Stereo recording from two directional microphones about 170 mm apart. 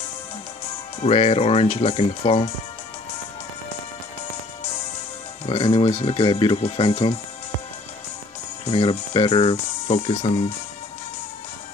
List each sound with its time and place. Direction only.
1.0 s speech: 40° left (ahead or behind)
5.5 s speech: 35° left (ahead or behind)
8.6 s speech: 35° left (ahead or behind)